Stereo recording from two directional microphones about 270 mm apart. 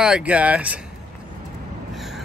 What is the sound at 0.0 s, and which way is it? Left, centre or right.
Speech, centre.